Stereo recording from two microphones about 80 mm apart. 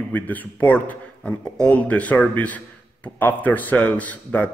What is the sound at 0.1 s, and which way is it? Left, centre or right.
A man's voice, left.